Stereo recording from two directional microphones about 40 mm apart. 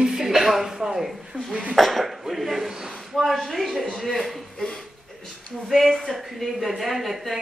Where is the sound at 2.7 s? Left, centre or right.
Centre.